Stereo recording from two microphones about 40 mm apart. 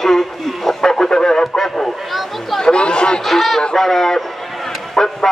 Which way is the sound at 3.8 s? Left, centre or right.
Centre.